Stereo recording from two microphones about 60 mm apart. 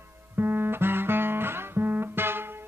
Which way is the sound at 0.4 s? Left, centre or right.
Right.